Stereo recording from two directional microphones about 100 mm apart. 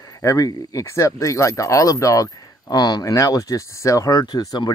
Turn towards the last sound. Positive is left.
turn(degrees=45)  # may be behind; listen again after turning